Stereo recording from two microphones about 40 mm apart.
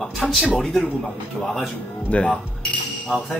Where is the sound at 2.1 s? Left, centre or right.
Left.